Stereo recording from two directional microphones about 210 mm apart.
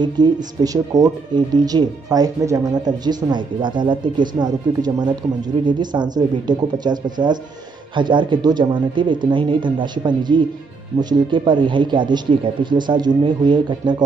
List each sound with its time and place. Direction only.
0.0 s speech: 20° right (ahead or behind)